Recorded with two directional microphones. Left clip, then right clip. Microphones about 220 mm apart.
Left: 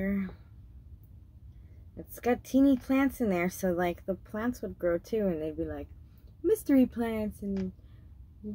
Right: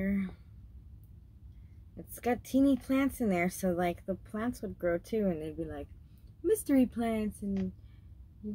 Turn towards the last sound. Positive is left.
turn(degrees=-5)  # may be behind; listen again after turning